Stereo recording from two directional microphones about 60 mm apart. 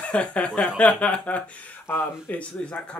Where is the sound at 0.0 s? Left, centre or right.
Left.